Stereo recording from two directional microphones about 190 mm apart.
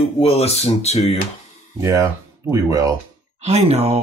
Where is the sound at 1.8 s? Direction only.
15° right (ahead or behind).